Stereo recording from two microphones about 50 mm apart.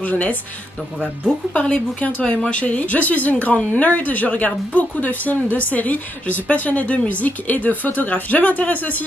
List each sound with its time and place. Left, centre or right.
0.0 s speech: left
1.5 s speech: left